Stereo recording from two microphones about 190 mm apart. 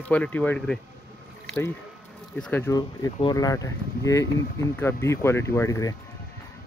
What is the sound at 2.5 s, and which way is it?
Speech, 10° left (ahead or behind).